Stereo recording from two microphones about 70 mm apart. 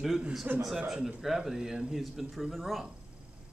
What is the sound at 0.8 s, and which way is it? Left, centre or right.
Speech, centre.